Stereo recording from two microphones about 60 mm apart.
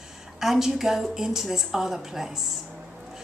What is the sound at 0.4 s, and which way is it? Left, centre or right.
A woman's voice, centre.